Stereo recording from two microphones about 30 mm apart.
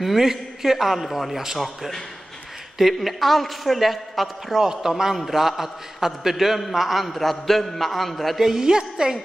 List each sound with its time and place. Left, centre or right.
0.2 s a man's voice: centre
2.8 s a woman's voice: centre
4.6 s a man's voice: centre
8.4 s a man's voice: centre
8.6 s a woman's voice: right